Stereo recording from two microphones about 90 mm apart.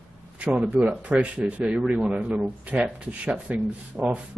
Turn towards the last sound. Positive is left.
turn(degrees=-15)  # may be behind; listen again after turning